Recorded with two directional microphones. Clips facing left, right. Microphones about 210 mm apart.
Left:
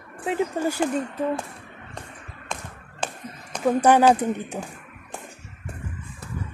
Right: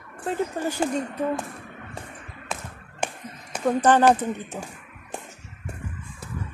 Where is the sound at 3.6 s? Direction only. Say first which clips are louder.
Left 1 dB; 10° left (ahead or behind).